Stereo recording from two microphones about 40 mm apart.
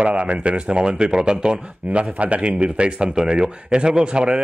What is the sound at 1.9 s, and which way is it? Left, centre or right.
Speech, right.